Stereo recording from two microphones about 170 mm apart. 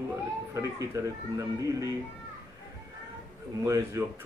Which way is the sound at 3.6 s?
15° right (ahead or behind).